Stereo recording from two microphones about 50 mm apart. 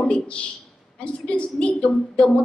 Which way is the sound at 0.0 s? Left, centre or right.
Left.